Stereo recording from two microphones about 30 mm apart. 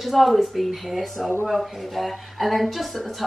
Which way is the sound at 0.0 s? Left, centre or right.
Centre.